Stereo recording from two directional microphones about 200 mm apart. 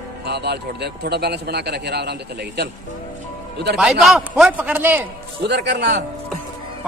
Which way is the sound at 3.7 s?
Centre (ahead or behind).